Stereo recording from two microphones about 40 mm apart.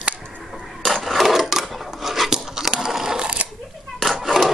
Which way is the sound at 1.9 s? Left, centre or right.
Centre.